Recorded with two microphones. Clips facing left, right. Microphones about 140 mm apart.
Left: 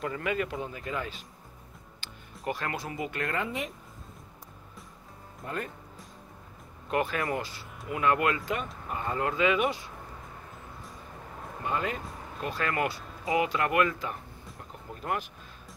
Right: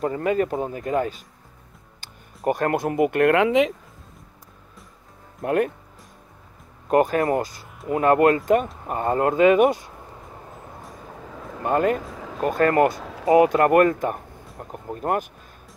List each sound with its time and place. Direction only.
0.0 s speech: 40° right (ahead or behind); by 3.7 s 90° right
5.4 s speech: 65° right (ahead or behind)
6.9 s speech: 45° right (ahead or behind)
11.6 s speech: 50° right (ahead or behind)
12.0 s a sound: 90° right
12.4 s speech: 45° right (ahead or behind)
13.0 s a sound: 90° right
13.3 s speech: 50° right (ahead or behind)